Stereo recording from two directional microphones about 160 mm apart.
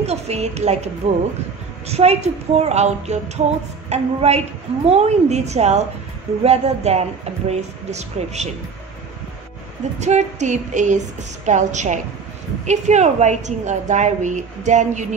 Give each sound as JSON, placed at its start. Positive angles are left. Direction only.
{"t": 0.0, "sound": "a woman's voice", "side_deg": -40}
{"t": 1.9, "sound": "a woman's voice", "side_deg": -40}
{"t": 9.9, "sound": "a woman's voice", "side_deg": -45}